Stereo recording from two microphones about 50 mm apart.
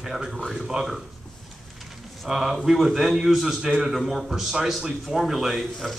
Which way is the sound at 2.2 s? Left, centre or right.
Centre.